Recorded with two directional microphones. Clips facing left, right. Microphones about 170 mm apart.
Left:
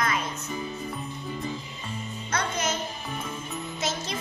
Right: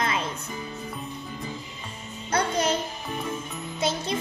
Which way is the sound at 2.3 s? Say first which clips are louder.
Right 5 dB; 35° right (ahead or behind).